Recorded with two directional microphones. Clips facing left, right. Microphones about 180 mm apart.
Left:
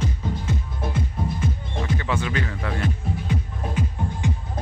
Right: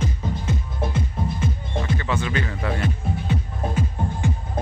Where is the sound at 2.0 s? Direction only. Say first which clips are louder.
Right 1 dB; 10° left (ahead or behind).